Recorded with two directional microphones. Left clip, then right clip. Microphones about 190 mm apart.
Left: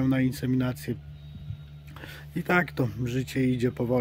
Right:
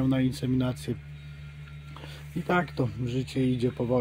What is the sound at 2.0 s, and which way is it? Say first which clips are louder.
Speech: left 2 dB; 40° left (ahead or behind).